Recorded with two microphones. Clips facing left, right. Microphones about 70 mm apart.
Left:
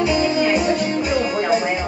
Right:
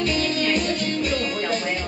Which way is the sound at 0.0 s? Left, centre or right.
Centre.